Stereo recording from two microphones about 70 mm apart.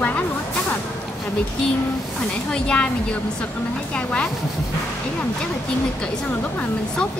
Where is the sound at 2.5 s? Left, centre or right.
Centre.